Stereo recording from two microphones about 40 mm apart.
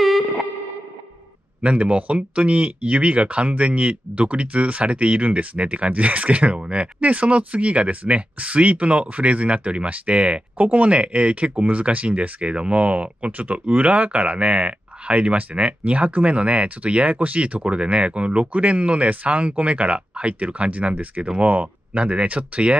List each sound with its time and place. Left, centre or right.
1.6 s speech: right
11.5 s speech: right
11.8 s speech: right
20.9 s speech: right